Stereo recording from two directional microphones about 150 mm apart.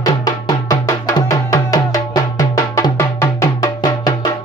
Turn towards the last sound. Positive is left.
turn(degrees=25)  # may be behind; listen again after turning